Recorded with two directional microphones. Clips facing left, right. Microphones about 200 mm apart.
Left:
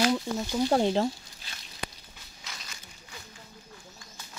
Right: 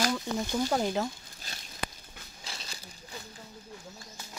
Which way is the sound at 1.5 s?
45° right (ahead or behind).